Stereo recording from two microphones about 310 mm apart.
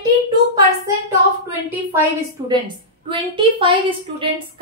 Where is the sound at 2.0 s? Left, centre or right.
Centre.